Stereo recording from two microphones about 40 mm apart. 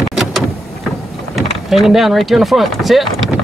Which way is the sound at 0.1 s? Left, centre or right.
Centre.